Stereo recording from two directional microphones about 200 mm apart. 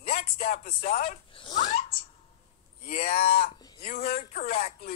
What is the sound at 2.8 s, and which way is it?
Speech, 45° left (ahead or behind).